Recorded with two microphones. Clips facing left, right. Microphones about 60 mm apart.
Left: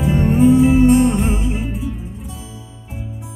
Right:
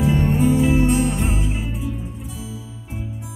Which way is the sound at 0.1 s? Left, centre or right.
Left.